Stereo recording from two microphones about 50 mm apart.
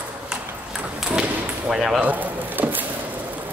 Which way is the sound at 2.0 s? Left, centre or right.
Right.